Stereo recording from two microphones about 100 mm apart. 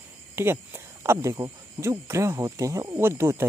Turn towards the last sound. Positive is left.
turn(degrees=-25)  # may be behind; listen again after turning